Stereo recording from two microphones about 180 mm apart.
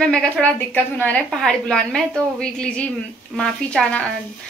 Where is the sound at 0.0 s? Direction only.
5° left (ahead or behind).